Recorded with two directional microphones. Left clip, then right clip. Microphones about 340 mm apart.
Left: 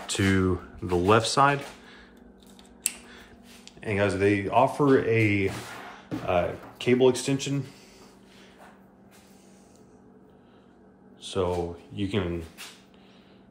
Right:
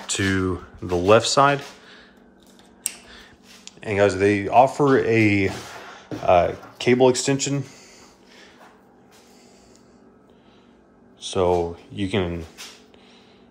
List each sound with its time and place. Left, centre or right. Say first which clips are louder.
0.0 s speech: right 2 dB; centre
3.1 s speech: right 3 dB; centre
11.2 s speech: right 7 dB; centre